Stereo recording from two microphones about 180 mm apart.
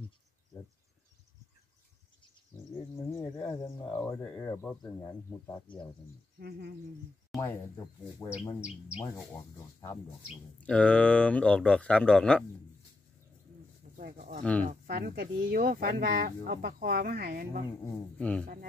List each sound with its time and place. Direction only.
3.1 s speech: 15° left (ahead or behind)
7.3 s speech: 20° left (ahead or behind)
8.5 s speech: 5° right (ahead or behind)
9.0 s speech: 15° left (ahead or behind)
10.6 s speech: 5° left (ahead or behind)
13.9 s speech: 55° right (ahead or behind)